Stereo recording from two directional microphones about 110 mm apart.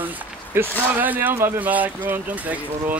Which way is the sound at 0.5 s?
20° right (ahead or behind).